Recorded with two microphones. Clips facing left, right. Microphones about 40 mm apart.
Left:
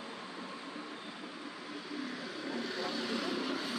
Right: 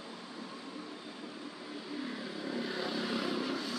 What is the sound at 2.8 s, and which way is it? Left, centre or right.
Vehicle, centre.